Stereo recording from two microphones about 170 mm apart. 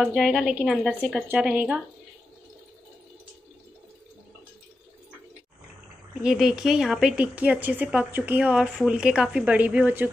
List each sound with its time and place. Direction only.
0.0 s speech: centre (ahead or behind)
6.2 s speech: 5° right (ahead or behind)